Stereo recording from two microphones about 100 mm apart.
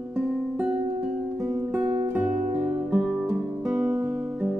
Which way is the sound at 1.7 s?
15° right (ahead or behind).